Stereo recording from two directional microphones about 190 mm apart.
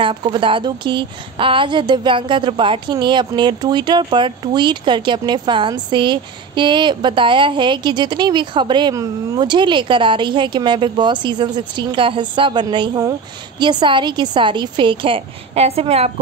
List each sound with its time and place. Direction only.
0.0 s a woman's voice: 25° right (ahead or behind)